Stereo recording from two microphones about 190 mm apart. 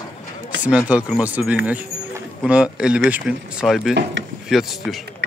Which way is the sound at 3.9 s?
65° right (ahead or behind).